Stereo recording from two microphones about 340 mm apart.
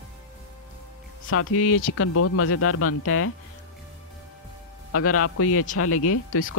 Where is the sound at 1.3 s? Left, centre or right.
Left.